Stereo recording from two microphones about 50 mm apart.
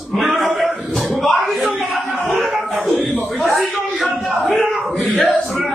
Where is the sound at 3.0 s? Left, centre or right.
Centre.